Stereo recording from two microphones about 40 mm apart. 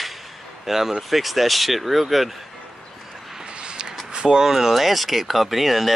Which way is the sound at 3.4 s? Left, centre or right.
Right.